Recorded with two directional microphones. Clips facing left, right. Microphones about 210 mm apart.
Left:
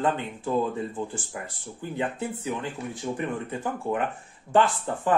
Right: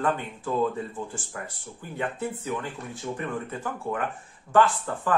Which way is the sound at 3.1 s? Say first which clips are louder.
Left 1 dB; 20° left (ahead or behind).